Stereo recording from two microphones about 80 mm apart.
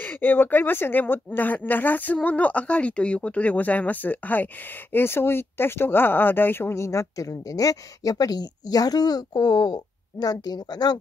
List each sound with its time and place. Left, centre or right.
0.0 s speech: left